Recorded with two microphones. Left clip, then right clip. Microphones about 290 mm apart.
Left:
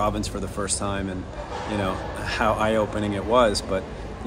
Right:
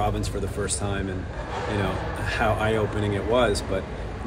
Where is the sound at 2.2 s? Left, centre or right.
Centre.